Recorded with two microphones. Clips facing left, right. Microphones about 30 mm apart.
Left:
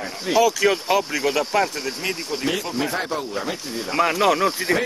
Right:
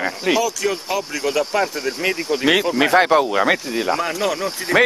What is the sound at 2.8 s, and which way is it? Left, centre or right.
Speech, right.